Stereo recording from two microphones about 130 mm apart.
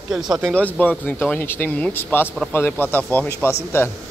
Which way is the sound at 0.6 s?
10° left (ahead or behind).